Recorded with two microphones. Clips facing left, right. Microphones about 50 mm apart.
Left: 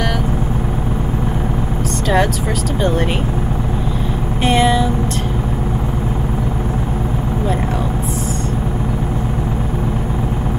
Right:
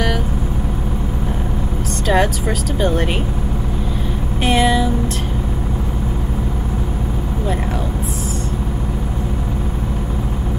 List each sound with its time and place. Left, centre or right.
2.0 s speech: centre
2.8 s vehicle: centre
4.4 s vehicle: centre